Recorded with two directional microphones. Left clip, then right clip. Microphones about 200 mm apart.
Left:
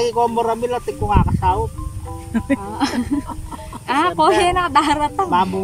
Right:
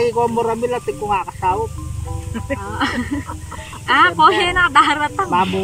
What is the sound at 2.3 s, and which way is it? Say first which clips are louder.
Speech: left 4 dB; 45° left (ahead or behind).